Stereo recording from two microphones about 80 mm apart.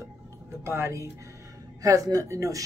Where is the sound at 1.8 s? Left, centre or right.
Right.